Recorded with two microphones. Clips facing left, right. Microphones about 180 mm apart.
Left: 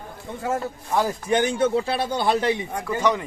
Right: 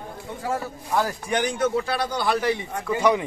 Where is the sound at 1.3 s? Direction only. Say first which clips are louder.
Left 3 dB; 25° left (ahead or behind).